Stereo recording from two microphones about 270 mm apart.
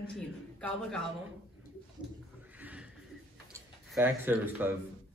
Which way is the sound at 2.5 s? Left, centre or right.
Centre.